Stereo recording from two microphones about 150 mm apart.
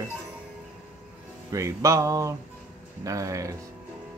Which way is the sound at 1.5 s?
20° right (ahead or behind).